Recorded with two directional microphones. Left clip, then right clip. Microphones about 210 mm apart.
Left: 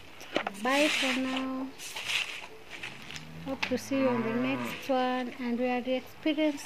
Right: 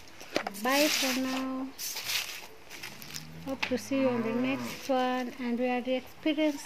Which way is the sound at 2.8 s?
5° right (ahead or behind).